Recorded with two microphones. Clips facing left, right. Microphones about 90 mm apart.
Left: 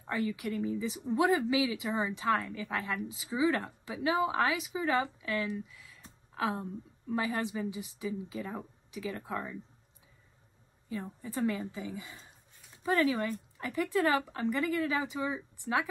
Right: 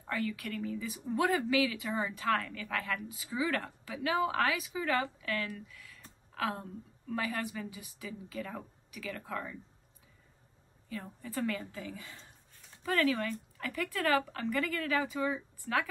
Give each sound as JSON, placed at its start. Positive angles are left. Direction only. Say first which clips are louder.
{"t": 0.0, "sound": "a woman's voice", "louder": "left 2 dB", "side_deg": 20}
{"t": 10.9, "sound": "a woman's voice", "louder": "left 3 dB", "side_deg": 20}